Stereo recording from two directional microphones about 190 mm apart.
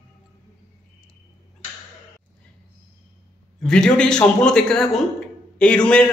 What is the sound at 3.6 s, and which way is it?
A man's voice, 5° left (ahead or behind).